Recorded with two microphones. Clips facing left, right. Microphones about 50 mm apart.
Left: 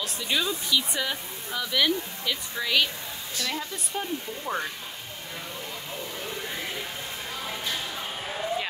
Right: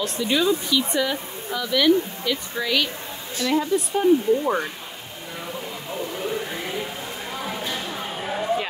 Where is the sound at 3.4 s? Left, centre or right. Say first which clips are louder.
Right 12 dB; centre.